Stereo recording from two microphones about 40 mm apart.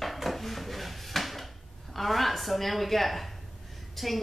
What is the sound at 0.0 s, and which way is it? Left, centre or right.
Dishes, centre.